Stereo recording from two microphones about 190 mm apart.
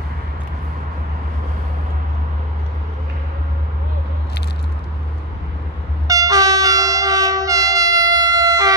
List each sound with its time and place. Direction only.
6.0 s train: 20° right (ahead or behind)